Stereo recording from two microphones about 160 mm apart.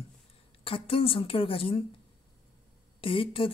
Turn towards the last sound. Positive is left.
turn(degrees=35)  # may be behind; listen again after turning